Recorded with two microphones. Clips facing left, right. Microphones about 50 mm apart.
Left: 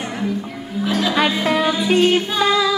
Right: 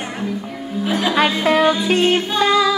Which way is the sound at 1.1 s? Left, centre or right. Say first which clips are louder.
Right 4 dB; centre.